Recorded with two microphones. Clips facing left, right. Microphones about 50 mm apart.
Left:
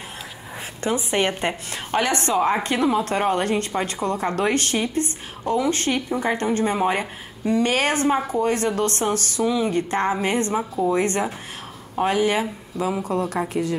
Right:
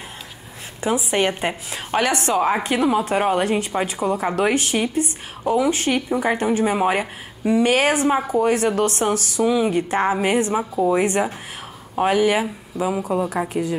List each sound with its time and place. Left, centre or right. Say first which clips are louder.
0.7 s a woman's voice: right 2 dB; centre